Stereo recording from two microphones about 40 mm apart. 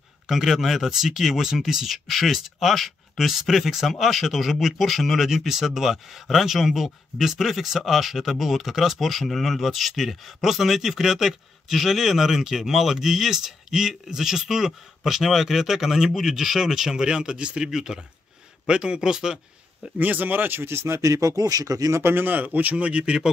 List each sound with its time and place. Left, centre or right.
0.3 s speech: centre
20.0 s speech: right
22.0 s speech: right
22.3 s speech: right